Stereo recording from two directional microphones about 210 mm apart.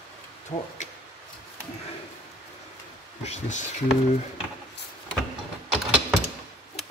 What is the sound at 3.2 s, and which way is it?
Speech, 30° left (ahead or behind).